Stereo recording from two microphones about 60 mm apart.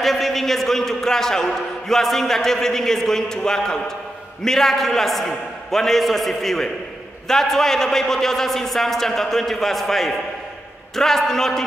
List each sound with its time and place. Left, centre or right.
0.0 s a man's voice: centre